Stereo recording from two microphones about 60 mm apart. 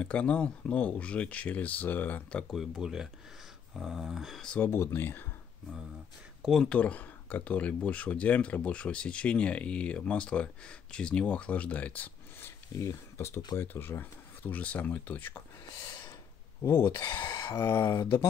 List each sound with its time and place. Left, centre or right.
0.0 s speech: centre
2.5 s speech: centre
4.6 s speech: left
6.6 s speech: left
12.8 s speech: left
13.6 s speech: left
16.6 s speech: left
17.3 s speech: left